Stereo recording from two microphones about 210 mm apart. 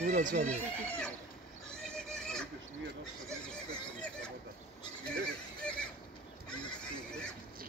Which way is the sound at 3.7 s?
5° left (ahead or behind).